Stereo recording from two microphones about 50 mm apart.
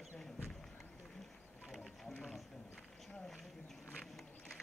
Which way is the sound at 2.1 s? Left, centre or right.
Centre.